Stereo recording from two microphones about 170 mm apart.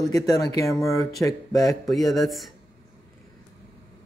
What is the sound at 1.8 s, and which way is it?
Speech, centre (ahead or behind).